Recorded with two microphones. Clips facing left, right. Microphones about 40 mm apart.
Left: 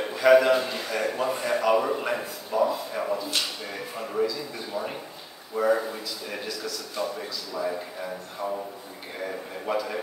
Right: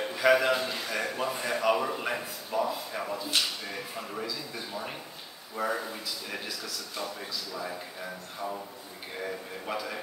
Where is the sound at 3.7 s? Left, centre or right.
Centre.